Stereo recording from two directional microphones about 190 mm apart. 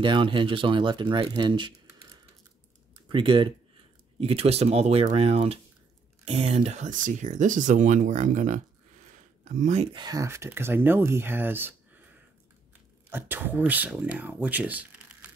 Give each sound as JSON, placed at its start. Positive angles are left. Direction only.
{"t": 0.0, "sound": "speech", "side_deg": -25}
{"t": 3.1, "sound": "speech", "side_deg": -25}
{"t": 9.9, "sound": "speech", "side_deg": -20}
{"t": 13.1, "sound": "speech", "side_deg": -10}